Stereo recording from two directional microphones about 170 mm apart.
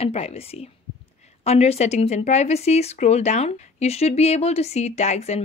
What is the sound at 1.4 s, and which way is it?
Speech, 40° left (ahead or behind).